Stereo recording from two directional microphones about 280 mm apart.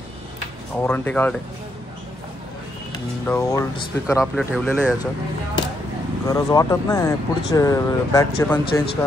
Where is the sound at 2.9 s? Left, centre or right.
Centre.